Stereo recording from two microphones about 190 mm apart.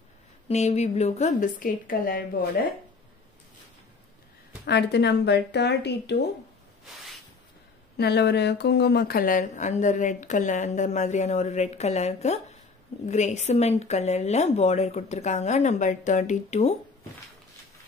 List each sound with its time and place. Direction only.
0.5 s speech: 35° left (ahead or behind); by 2.7 s 50° left (ahead or behind)
4.6 s speech: 60° left (ahead or behind)
8.0 s speech: 60° left (ahead or behind); by 16.7 s 35° left (ahead or behind)